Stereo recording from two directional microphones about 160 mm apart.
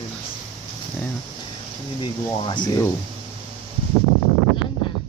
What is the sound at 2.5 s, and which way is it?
Speech, 25° left (ahead or behind).